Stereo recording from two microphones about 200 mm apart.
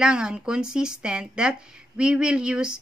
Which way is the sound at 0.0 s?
5° right (ahead or behind).